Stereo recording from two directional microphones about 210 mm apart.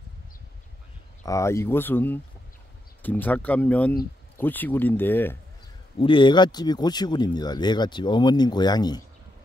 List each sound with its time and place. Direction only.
1.2 s speech: 15° left (ahead or behind)
5.9 s speech: 25° left (ahead or behind)